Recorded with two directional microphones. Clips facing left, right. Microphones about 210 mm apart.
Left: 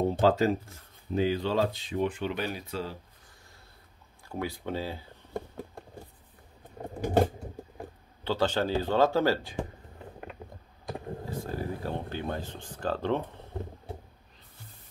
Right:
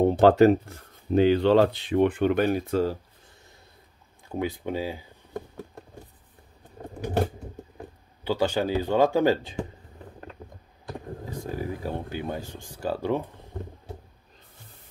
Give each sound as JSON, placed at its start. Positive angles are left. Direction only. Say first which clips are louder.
{"t": 0.0, "sound": "speech", "louder": "right 7 dB", "side_deg": -65}
{"t": 4.3, "sound": "speech", "louder": "right 4 dB", "side_deg": -20}
{"t": 8.2, "sound": "speech", "louder": "right 3 dB", "side_deg": -10}
{"t": 11.2, "sound": "speech", "louder": "right 3 dB", "side_deg": -15}